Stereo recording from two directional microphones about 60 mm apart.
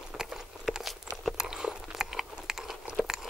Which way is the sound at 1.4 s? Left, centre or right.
Centre.